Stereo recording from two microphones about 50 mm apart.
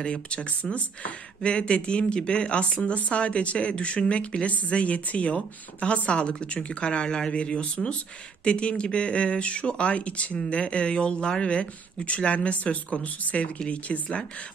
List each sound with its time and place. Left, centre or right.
0.0 s speech: centre